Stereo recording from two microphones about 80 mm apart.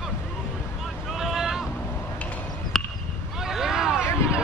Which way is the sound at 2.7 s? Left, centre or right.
Centre.